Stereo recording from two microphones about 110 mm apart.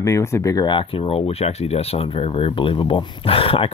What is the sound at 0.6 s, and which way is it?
Speech, 50° left (ahead or behind).